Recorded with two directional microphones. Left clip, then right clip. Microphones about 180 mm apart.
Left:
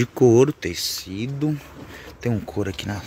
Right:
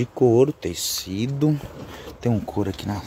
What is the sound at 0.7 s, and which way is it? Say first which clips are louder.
Speech: even; 20° right (ahead or behind).